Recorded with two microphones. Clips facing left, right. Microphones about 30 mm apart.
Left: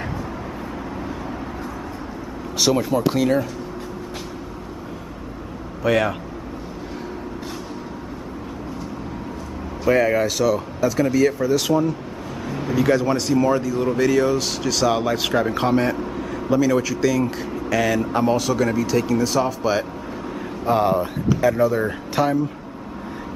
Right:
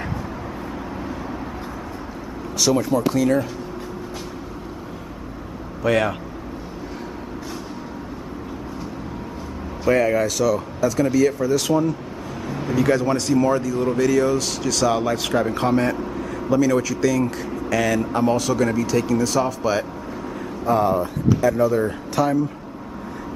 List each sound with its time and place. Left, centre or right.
2.6 s speech: centre
5.9 s speech: centre
9.8 s speech: centre
20.6 s speech: left
21.4 s speech: centre